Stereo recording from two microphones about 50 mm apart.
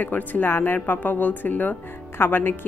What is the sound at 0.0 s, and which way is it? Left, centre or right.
Speech, left.